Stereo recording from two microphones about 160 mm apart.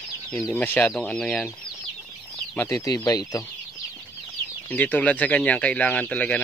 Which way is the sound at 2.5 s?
15° left (ahead or behind).